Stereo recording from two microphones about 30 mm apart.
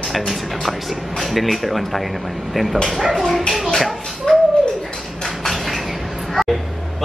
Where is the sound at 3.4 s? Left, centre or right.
Centre.